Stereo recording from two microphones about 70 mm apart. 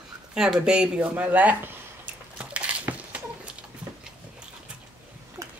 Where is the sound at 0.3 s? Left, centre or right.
Centre.